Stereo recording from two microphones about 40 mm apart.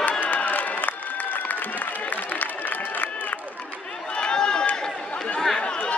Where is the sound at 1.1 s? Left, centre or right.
Left.